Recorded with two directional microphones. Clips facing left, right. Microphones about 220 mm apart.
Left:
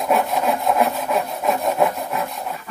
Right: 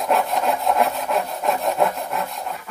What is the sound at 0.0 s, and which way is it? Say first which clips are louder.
Wood: left 1 dB; centre (ahead or behind).